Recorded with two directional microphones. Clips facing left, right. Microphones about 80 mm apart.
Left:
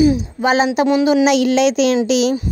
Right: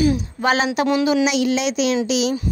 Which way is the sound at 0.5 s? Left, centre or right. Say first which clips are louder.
Left 5 dB; centre.